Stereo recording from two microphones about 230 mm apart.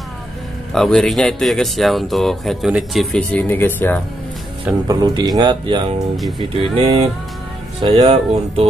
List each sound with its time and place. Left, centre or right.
0.7 s speech: centre
4.8 s speech: centre